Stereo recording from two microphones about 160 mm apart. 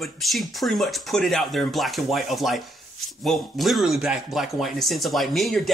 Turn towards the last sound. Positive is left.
turn(degrees=0)  # may be behind; listen again after turning